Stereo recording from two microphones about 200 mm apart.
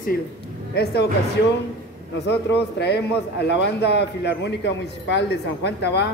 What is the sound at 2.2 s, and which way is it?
A man's voice, 60° left (ahead or behind).